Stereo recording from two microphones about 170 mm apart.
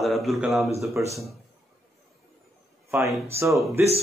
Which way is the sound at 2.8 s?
15° right (ahead or behind).